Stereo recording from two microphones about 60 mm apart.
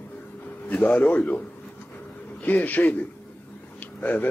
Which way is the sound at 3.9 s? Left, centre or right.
Left.